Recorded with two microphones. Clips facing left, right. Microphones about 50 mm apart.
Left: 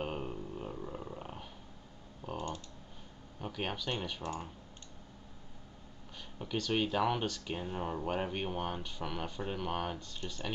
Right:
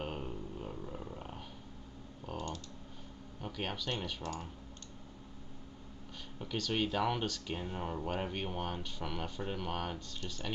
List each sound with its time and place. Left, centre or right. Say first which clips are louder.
0.0 s a sound: left 2 dB; centre
2.3 s typing: left 2 dB; centre
3.3 s speech: left 2 dB; centre
4.2 s speech: left 2 dB; left
6.3 s speech: left 2 dB; centre